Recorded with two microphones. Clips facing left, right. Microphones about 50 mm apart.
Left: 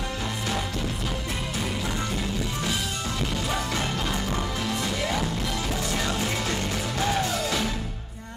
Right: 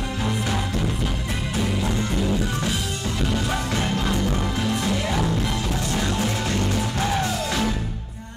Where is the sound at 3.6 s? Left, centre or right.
Centre.